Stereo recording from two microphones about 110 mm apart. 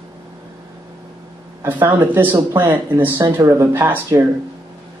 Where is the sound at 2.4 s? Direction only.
25° right (ahead or behind).